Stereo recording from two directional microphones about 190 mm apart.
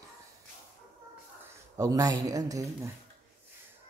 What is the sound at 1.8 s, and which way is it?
Speech, 20° right (ahead or behind).